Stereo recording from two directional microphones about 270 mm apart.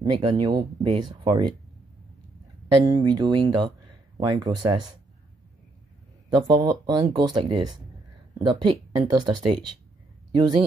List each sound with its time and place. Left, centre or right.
0.0 s speech: centre
2.8 s speech: centre
6.3 s speech: centre